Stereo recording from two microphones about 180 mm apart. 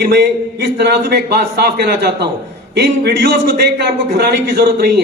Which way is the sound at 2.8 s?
60° right (ahead or behind).